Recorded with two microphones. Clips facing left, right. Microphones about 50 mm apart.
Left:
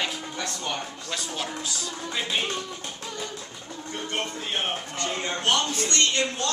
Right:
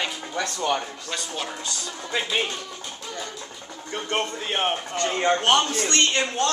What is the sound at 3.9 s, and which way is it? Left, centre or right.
A man's voice, right.